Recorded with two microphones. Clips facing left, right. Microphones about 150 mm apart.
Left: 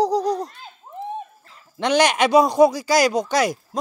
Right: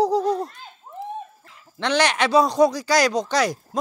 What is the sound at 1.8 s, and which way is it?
Speech, 15° left (ahead or behind).